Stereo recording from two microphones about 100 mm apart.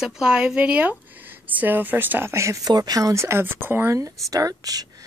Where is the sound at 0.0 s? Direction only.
5° right (ahead or behind).